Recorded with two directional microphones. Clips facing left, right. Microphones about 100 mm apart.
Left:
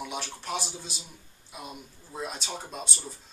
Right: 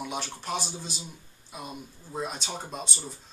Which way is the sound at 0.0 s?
Centre (ahead or behind).